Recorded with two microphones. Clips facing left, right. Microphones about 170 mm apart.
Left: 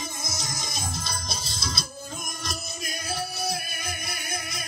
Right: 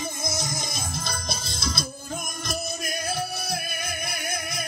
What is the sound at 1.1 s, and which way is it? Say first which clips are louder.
Music: right 2 dB; 55° right (ahead or behind).